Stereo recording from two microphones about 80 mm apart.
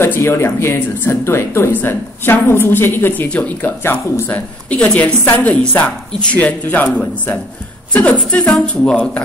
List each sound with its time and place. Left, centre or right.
0.0 s speech: left
5.5 s speech: centre